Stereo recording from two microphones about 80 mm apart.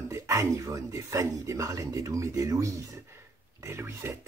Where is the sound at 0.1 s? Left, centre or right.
Right.